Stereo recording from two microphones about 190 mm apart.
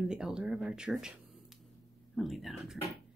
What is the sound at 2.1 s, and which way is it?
Speech, centre (ahead or behind).